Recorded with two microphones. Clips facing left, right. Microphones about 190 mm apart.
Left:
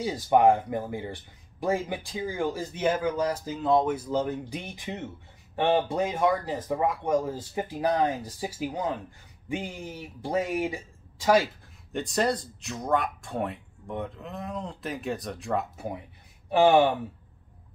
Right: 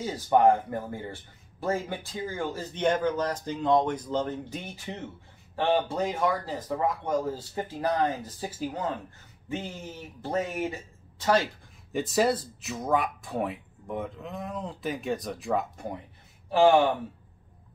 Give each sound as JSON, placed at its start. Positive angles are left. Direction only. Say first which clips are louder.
{"t": 0.0, "sound": "speech", "louder": "left 1 dB", "side_deg": 15}
{"t": 11.9, "sound": "speech", "louder": "right 2 dB", "side_deg": -5}
{"t": 16.4, "sound": "speech", "louder": "even", "side_deg": 15}